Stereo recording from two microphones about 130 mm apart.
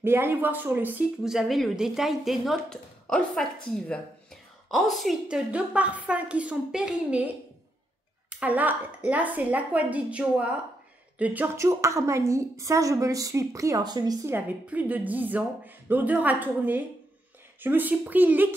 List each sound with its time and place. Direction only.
0.0 s a woman's voice: 15° right (ahead or behind)
1.2 s a woman's voice: centre (ahead or behind); by 14.3 s 30° right (ahead or behind)
14.3 s a woman's voice: 15° right (ahead or behind)